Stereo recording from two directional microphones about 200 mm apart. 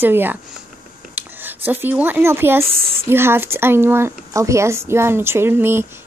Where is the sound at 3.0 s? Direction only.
10° right (ahead or behind).